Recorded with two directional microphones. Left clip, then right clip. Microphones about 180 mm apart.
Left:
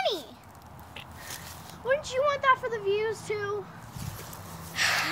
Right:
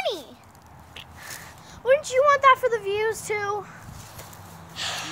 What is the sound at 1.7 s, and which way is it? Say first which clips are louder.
Speech: right 7 dB; 25° right (ahead or behind).